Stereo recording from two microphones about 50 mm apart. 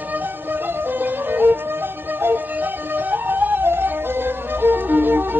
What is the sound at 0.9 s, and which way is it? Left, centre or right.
Music, right.